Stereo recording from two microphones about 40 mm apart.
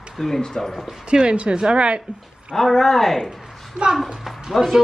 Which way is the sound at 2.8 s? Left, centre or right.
Centre.